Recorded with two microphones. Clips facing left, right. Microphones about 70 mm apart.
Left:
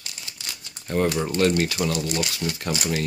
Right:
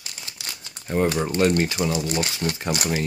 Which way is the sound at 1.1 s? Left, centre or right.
Centre.